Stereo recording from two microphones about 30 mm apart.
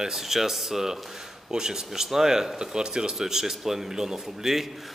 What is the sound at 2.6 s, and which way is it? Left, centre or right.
Speech, right.